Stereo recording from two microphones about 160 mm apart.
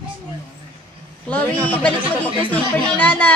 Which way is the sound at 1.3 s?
10° left (ahead or behind).